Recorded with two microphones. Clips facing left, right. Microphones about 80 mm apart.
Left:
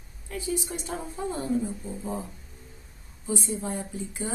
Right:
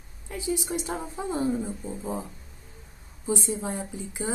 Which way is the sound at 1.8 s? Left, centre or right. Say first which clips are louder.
Right 1 dB; centre.